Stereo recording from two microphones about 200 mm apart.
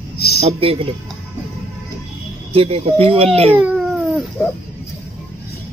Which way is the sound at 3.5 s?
5° right (ahead or behind).